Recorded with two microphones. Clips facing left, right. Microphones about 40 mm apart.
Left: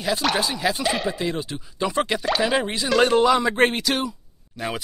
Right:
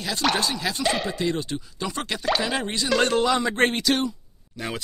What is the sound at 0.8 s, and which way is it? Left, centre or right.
Speech, centre.